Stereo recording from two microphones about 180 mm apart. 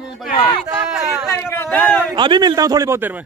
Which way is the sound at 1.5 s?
10° left (ahead or behind).